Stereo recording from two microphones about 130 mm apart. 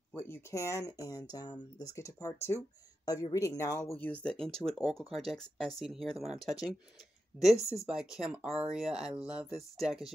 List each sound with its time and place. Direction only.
0.1 s speech: 15° left (ahead or behind)
3.9 s speech: 10° left (ahead or behind)
7.8 s speech: 5° right (ahead or behind)